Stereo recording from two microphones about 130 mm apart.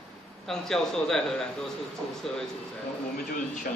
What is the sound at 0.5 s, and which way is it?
A man's voice, 5° left (ahead or behind).